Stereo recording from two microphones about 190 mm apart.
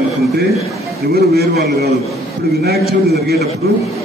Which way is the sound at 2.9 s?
55° right (ahead or behind).